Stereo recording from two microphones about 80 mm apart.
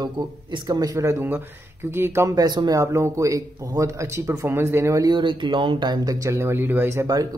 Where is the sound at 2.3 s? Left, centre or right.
Right.